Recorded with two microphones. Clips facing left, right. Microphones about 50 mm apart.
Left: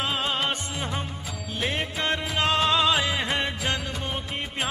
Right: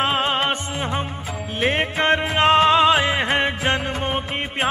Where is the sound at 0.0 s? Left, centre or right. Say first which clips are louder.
Right 6 dB; right.